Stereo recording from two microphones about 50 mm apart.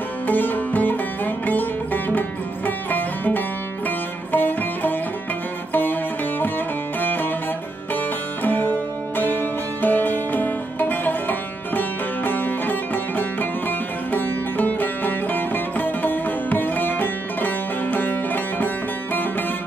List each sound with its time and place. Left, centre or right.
0.3 s music: left
7.0 s music: left